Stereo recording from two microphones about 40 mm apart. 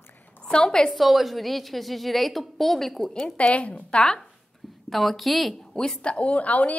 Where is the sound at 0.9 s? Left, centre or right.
Centre.